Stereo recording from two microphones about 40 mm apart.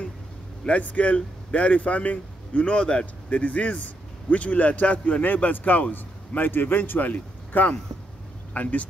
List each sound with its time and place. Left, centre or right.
0.7 s speech: left
2.6 s a man's voice: left
3.3 s a man's voice: left
6.5 s a man's voice: left